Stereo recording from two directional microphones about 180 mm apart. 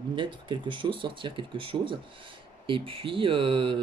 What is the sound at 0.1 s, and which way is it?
Speech, 25° right (ahead or behind).